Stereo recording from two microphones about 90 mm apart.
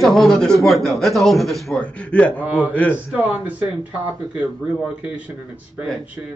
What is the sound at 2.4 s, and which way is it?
Speech, 20° right (ahead or behind).